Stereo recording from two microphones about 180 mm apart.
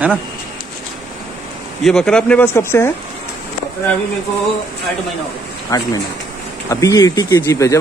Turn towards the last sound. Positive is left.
turn(degrees=15)  # may be behind; listen again after turning